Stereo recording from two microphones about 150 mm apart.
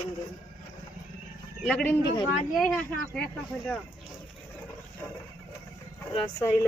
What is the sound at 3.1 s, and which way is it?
Speech, 5° left (ahead or behind).